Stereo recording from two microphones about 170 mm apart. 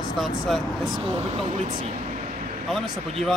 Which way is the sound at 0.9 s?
35° right (ahead or behind).